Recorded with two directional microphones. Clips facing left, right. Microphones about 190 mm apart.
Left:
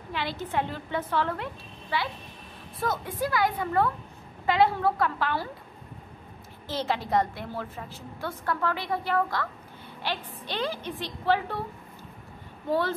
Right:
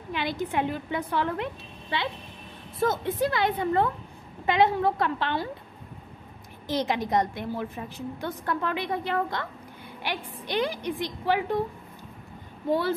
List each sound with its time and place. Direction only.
0.1 s a woman's voice: 15° right (ahead or behind)
6.7 s a woman's voice: 15° right (ahead or behind)